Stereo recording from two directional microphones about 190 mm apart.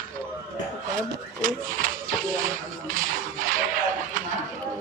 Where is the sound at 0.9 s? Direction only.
45° right (ahead or behind).